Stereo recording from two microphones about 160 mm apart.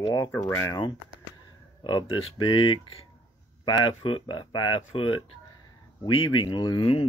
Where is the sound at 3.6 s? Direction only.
25° left (ahead or behind).